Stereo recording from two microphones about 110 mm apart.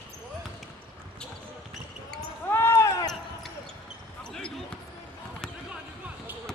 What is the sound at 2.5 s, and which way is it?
Basketball bounce, 25° left (ahead or behind).